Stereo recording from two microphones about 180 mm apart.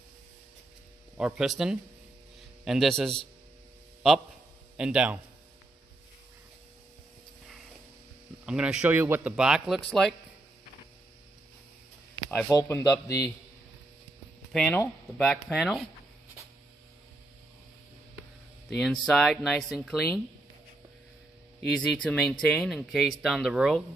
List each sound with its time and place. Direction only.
1.1 s speech: 5° right (ahead or behind)
4.7 s speech: 5° right (ahead or behind)
8.5 s speech: 5° right (ahead or behind)
12.4 s a man's voice: 15° left (ahead or behind)
14.5 s speech: 5° left (ahead or behind)
18.7 s speech: 5° left (ahead or behind)
21.6 s speech: 5° left (ahead or behind)